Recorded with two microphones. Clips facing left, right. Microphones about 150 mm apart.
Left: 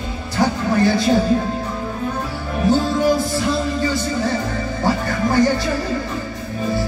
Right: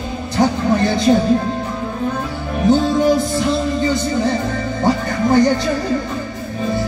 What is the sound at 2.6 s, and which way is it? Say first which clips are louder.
Music: right 3 dB; 20° right (ahead or behind).